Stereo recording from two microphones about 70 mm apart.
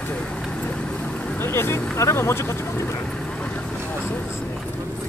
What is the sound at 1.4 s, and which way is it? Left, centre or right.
Speech, left.